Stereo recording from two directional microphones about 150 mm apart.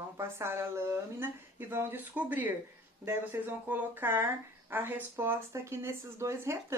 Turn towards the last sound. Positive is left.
turn(degrees=-20)  # may be behind; listen again after turning